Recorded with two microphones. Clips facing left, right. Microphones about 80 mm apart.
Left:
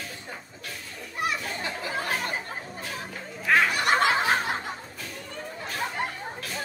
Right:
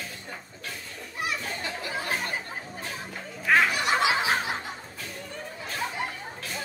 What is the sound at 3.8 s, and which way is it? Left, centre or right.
Snicker, left.